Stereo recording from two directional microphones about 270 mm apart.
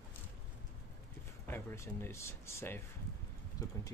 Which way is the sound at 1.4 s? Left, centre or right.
Centre.